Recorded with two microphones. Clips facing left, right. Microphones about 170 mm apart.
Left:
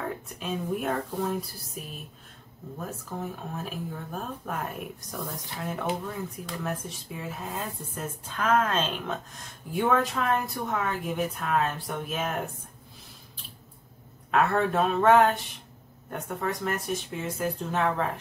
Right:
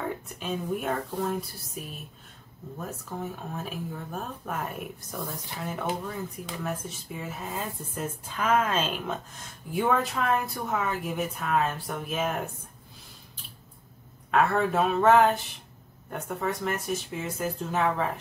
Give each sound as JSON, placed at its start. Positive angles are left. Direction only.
{"t": 0.0, "sound": "speech", "side_deg": 0}
{"t": 2.8, "sound": "speech", "side_deg": 0}
{"t": 14.3, "sound": "speech", "side_deg": 0}